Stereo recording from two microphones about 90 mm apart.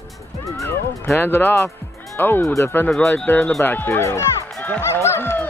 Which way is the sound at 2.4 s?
35° left (ahead or behind).